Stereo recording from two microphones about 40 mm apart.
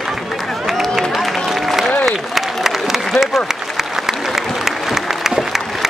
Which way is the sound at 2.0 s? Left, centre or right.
Centre.